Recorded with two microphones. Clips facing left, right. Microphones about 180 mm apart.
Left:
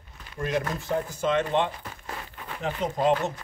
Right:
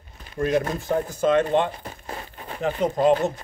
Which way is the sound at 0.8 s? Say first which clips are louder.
Right 4 dB; 50° right (ahead or behind).